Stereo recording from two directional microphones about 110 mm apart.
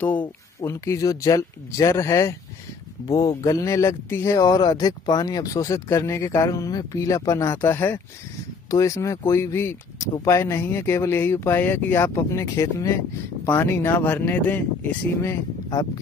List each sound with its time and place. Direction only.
0.6 s speech: 25° left (ahead or behind)
15.7 s speech: 35° left (ahead or behind)